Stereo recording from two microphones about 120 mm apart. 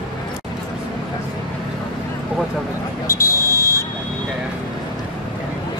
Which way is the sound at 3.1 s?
25° left (ahead or behind).